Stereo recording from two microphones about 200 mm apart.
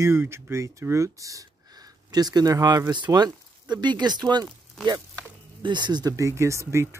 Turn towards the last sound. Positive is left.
turn(degrees=-15)  # may be behind; listen again after turning